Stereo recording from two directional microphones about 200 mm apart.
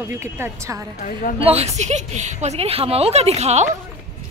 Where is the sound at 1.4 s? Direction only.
30° right (ahead or behind).